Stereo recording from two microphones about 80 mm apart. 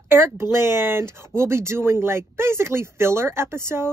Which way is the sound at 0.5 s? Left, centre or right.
Right.